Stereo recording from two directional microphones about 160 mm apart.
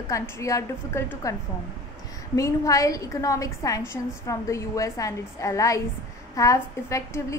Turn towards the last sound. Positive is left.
turn(degrees=20)  # may be behind; listen again after turning